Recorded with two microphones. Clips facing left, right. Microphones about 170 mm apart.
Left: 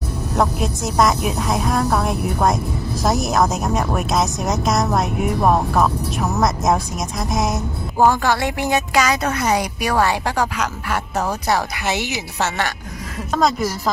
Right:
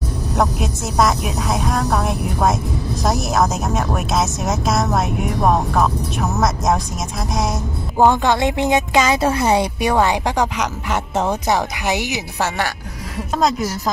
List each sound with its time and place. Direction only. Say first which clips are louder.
0.4 s speech: even; centre (ahead or behind)
8.0 s a woman's voice: right 2 dB; 20° right (ahead or behind)